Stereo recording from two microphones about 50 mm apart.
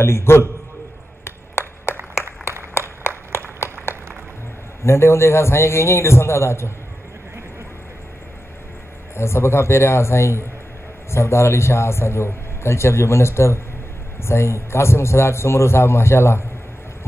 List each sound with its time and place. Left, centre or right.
0.0 s a man's voice: left
1.2 s a sound: left
4.8 s a man's voice: left
9.1 s a man's voice: left